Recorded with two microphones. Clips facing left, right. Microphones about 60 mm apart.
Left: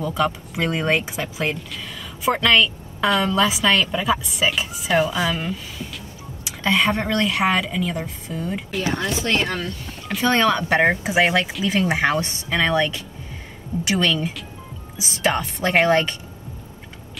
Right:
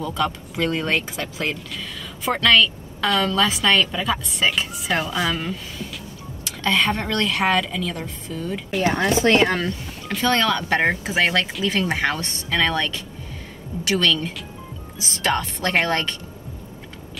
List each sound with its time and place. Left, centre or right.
0.0 s a woman's voice: centre
8.8 s speech: right
10.2 s speech: centre